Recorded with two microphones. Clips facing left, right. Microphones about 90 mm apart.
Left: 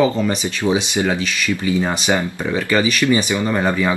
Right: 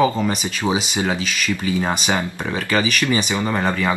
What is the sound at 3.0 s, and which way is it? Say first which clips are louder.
Speech: left 3 dB; 20° right (ahead or behind).